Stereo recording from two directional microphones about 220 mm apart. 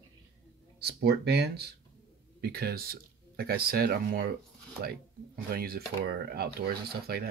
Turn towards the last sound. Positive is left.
turn(degrees=-45)  # may be behind; listen again after turning